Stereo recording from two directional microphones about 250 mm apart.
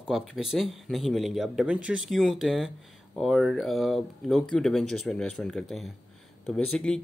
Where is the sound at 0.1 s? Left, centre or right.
Centre.